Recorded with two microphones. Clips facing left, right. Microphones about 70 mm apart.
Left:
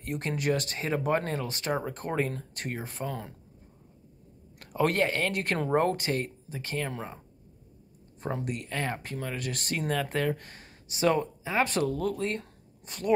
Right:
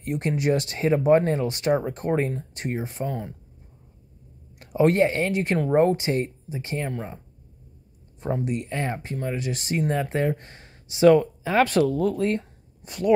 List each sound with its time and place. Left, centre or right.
0.2 s speech: right
1.6 s speech: centre
1.9 s speech: right; by 3.3 s centre
4.6 s speech: right
5.3 s speech: centre
5.9 s speech: centre
6.9 s speech: centre
8.5 s speech: right
11.4 s speech: right